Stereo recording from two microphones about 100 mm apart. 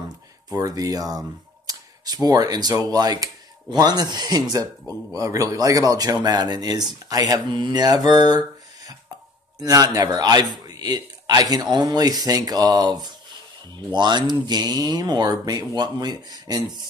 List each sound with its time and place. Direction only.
0.5 s a man's voice: 35° right (ahead or behind)
7.5 s mantra: 45° right (ahead or behind)
9.6 s a man's voice: 40° right (ahead or behind)